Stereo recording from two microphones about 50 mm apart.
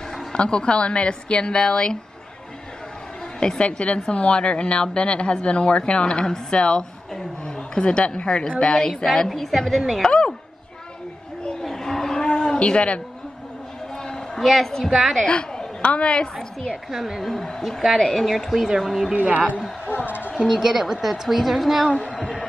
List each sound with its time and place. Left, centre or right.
0.3 s a woman's voice: centre
3.3 s a woman's voice: centre
10.0 s a woman's voice: centre
11.6 s a sound: centre
12.3 s a sound: centre
14.0 s a sound: centre
14.4 s a woman's voice: centre
15.2 s a woman's voice: left
16.9 s a woman's voice: centre
19.1 s a woman's voice: right
19.9 s a woman's voice: left
20.4 s a woman's voice: centre
21.9 s a woman's voice: centre